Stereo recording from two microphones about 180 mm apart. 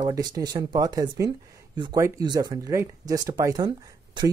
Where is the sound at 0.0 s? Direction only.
20° right (ahead or behind).